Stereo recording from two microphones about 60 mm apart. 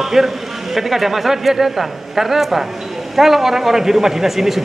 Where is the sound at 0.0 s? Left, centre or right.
Centre.